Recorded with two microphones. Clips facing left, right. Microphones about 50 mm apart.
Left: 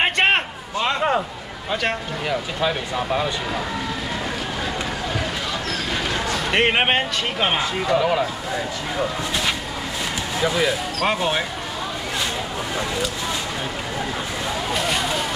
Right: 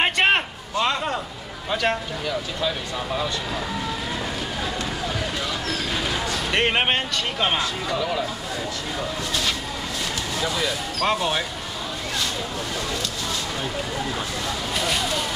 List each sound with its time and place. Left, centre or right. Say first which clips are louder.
0.0 s a sound: left 1 dB; centre
1.7 s speech: even; centre
2.2 s speech: left 4 dB; left
5.9 s speech: left 2 dB; centre
9.3 s vehicle: left 2 dB; left
10.4 s speech: left 6 dB; left
12.7 s speech: left 6 dB; centre
14.7 s vehicle: left 2 dB; centre